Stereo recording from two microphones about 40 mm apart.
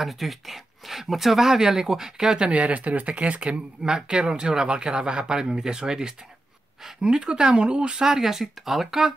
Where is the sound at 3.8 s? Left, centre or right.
Centre.